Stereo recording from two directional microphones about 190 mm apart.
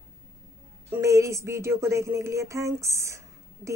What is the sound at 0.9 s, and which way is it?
Speech, 15° right (ahead or behind).